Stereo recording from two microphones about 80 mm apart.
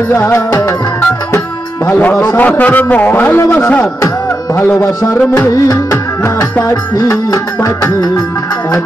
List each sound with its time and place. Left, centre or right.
0.1 s a man's voice: left
1.9 s a man's voice: left
4.7 s music: left
7.1 s music: left